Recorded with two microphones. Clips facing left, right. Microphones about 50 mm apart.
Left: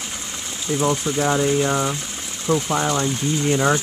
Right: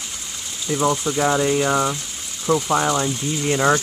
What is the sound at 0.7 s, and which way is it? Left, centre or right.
Speech, centre.